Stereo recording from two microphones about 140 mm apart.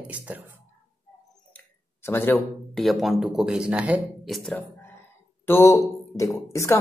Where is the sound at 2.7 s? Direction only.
Centre (ahead or behind).